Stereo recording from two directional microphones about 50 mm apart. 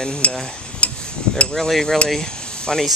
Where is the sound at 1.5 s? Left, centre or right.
Centre.